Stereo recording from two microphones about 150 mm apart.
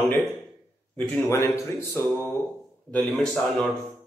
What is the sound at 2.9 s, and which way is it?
Speech, 5° left (ahead or behind).